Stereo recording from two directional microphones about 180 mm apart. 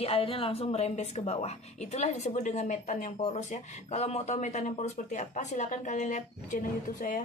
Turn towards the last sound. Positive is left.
turn(degrees=45)  # may be behind; listen again after turning